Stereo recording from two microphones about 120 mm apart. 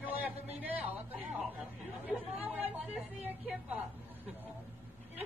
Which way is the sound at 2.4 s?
15° right (ahead or behind).